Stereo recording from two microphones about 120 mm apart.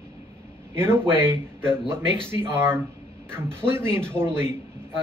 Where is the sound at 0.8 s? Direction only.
20° right (ahead or behind).